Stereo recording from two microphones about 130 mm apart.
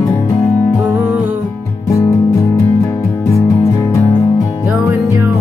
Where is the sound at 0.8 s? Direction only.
15° right (ahead or behind).